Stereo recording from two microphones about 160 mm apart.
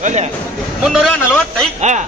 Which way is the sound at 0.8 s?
5° right (ahead or behind).